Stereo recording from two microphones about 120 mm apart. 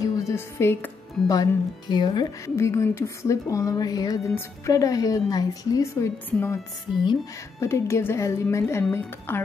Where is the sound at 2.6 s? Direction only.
25° left (ahead or behind).